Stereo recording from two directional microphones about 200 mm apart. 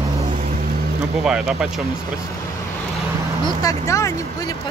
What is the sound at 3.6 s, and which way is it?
Speech, 15° left (ahead or behind).